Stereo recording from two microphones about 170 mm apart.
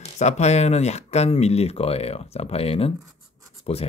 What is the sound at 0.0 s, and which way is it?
Speech, 40° left (ahead or behind).